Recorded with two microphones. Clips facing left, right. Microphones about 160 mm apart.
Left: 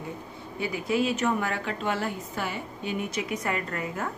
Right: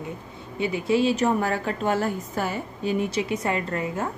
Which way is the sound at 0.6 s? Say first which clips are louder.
Right 4 dB; 25° right (ahead or behind).